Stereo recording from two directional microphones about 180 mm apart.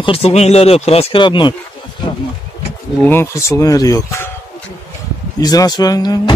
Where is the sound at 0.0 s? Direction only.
35° left (ahead or behind).